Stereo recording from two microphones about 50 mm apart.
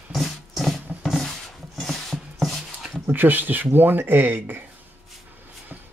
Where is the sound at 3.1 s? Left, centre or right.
Right.